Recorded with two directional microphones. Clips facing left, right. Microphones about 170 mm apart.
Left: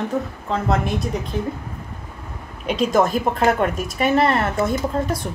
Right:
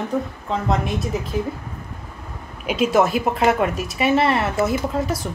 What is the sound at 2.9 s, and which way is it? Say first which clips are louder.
A woman's voice: even; 5° right (ahead or behind).